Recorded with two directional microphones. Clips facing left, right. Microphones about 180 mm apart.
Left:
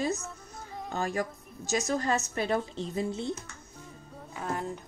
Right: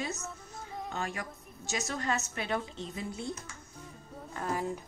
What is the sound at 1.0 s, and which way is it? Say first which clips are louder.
A woman's voice: left 9 dB; 40° left (ahead or behind).